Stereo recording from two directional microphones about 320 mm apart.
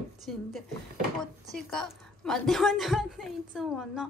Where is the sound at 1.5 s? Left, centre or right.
Centre.